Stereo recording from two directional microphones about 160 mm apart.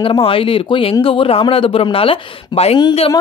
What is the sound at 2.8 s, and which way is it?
Speech, 25° left (ahead or behind).